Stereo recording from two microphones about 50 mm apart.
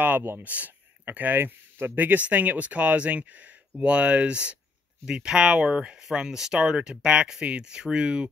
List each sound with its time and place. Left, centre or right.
0.0 s speech: right
2.0 s speech: right